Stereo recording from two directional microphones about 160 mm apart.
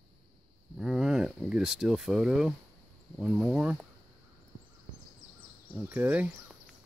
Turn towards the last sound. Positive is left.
turn(degrees=-10)  # may be behind; listen again after turning